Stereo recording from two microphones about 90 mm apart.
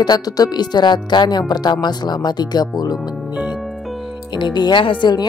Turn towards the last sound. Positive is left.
turn(degrees=55)  # may be behind; listen again after turning